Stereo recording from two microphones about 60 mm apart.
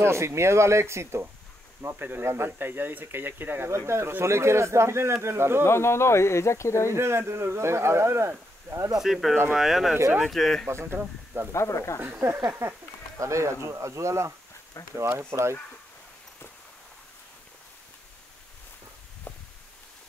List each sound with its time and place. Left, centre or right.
0.0 s speech: right
3.7 s speech: right
5.6 s speech: left
6.9 s speech: right
8.7 s speech: right
9.0 s speech: centre
10.7 s speech: right
11.5 s speech: left
12.0 s speech: right
13.2 s speech: right
19.3 s a sound: left